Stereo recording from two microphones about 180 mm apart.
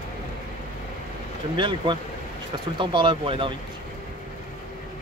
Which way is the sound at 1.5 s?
25° right (ahead or behind).